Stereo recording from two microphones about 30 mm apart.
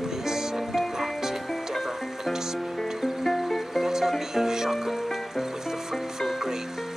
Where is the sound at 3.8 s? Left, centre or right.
Centre.